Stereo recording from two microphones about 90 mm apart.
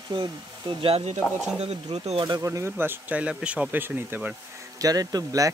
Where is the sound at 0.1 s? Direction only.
60° right (ahead or behind); by 1.0 s 85° right.